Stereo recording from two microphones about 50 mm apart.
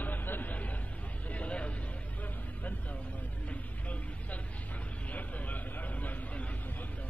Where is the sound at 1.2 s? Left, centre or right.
Left.